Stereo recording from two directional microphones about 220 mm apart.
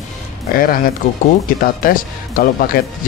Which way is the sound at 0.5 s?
40° left (ahead or behind).